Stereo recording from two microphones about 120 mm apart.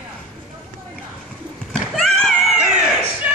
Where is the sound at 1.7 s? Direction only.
Centre (ahead or behind).